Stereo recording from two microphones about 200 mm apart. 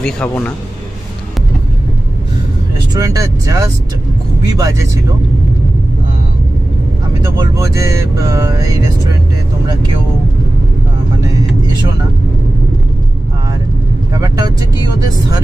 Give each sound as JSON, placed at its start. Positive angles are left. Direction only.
{"t": 0.0, "sound": "a man's voice", "side_deg": 5}
{"t": 2.9, "sound": "speech", "side_deg": -15}
{"t": 7.3, "sound": "speech", "side_deg": -15}
{"t": 11.2, "sound": "vehicle", "side_deg": -20}
{"t": 14.1, "sound": "speech", "side_deg": -20}